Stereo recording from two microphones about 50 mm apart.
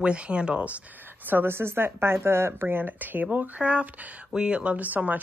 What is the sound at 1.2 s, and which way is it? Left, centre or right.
A woman's voice, right.